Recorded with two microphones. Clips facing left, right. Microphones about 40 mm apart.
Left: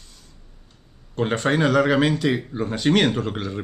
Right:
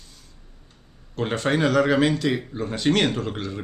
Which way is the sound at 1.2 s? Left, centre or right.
Centre.